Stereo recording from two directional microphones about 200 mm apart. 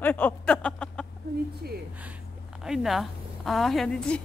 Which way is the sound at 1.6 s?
50° right (ahead or behind).